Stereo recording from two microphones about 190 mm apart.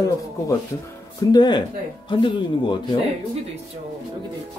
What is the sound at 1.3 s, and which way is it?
Speech, 20° left (ahead or behind).